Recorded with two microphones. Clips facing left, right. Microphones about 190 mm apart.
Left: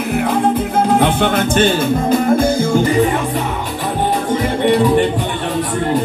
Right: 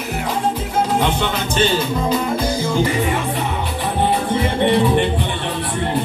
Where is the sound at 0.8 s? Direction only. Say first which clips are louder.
Left 7 dB; 55° left (ahead or behind).